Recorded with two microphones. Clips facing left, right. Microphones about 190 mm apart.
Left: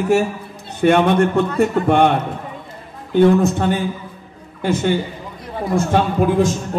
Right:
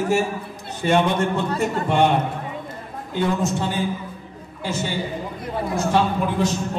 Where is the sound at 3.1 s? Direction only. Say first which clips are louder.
Left 9 dB; 60° left (ahead or behind).